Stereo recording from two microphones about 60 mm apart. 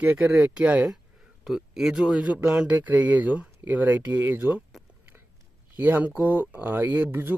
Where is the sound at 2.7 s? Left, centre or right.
Right.